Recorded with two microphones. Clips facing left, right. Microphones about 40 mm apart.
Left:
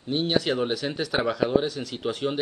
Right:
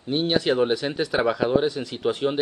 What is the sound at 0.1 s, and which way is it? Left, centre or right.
Speech, centre.